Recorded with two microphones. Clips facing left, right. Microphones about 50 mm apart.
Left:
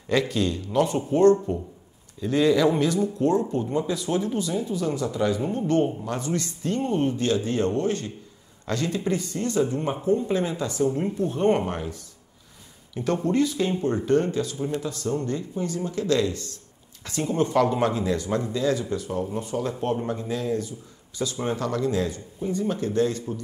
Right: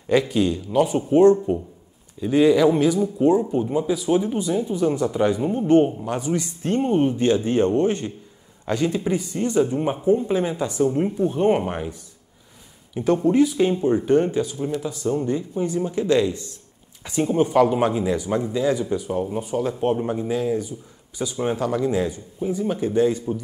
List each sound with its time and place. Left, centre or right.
0.1 s speech: centre
5.4 s speech: centre
6.6 s speech: right; by 23.4 s centre